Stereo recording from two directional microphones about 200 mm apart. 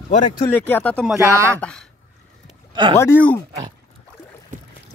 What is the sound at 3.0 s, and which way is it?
Speech, 10° left (ahead or behind).